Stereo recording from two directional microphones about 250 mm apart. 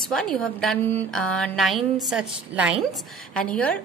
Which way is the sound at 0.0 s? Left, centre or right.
Centre.